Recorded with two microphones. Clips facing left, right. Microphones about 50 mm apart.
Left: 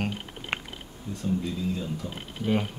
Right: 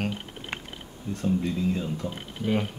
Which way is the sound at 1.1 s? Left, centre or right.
Right.